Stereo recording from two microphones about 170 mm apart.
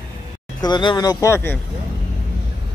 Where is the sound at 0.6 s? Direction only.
25° left (ahead or behind).